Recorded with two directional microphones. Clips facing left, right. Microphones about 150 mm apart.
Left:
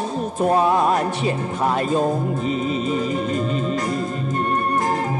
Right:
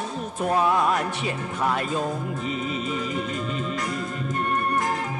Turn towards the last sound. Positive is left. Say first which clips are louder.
# left 6 dB
turn(degrees=35)  # may be behind; listen again after turning